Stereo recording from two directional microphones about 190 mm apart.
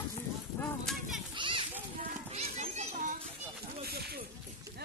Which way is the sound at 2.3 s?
35° right (ahead or behind).